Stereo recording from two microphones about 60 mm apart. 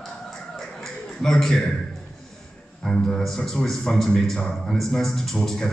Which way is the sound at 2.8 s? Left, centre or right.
Centre.